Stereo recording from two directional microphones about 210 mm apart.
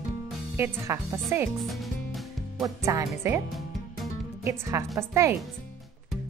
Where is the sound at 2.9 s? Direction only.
15° right (ahead or behind).